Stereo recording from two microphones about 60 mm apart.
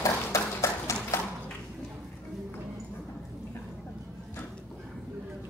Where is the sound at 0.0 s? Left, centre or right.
Left.